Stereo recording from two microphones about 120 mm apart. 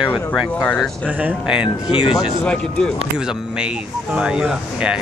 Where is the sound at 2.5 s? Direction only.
10° left (ahead or behind).